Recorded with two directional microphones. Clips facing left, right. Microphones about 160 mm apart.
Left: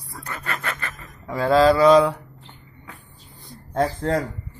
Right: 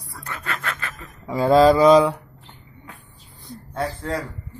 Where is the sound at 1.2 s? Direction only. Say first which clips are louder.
Right 2 dB; 15° right (ahead or behind).